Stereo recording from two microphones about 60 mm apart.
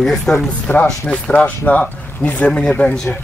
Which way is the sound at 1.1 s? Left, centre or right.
Centre.